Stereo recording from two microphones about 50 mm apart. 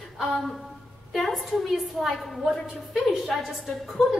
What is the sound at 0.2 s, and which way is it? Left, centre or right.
Speech, centre.